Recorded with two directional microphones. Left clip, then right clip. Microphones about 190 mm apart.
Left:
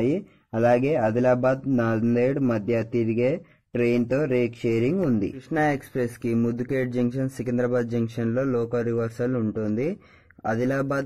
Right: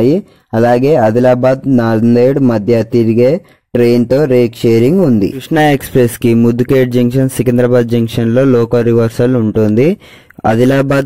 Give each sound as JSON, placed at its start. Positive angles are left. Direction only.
{"t": 0.0, "sound": "speech", "side_deg": -45}